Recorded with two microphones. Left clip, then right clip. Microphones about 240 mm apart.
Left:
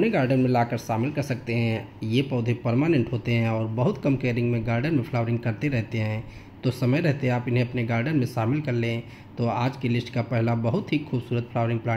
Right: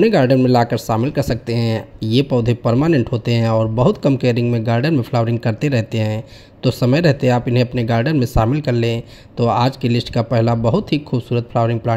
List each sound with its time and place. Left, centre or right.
0.0 s speech: right